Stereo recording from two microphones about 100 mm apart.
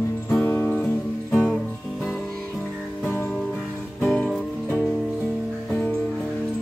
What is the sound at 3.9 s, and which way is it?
Music, 5° left (ahead or behind).